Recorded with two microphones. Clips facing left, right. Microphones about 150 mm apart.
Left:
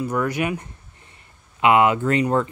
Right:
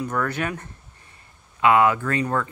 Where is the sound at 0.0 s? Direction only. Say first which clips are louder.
Left 3 dB; 10° left (ahead or behind).